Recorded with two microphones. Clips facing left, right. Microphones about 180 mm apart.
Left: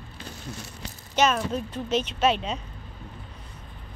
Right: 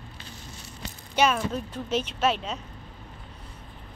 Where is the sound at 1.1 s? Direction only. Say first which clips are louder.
Left 1 dB; 10° right (ahead or behind).